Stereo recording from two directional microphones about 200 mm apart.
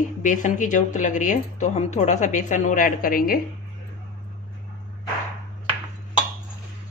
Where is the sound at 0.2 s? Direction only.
40° left (ahead or behind).